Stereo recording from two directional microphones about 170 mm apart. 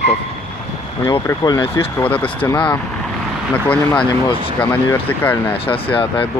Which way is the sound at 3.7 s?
10° left (ahead or behind).